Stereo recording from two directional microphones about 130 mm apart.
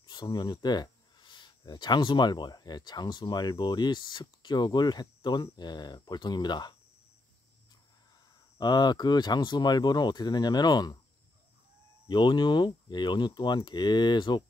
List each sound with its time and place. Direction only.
0.0 s a sound: 35° left (ahead or behind)
1.7 s speech: 35° left (ahead or behind)
8.5 s speech: 35° left (ahead or behind)
12.1 s speech: 35° left (ahead or behind)